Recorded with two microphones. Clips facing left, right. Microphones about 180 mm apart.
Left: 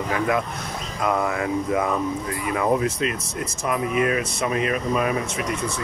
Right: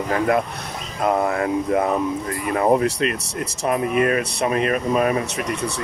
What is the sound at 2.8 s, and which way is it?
Speech, 65° right (ahead or behind).